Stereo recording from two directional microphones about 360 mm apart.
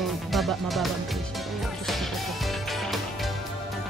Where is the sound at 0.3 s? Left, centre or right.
Centre.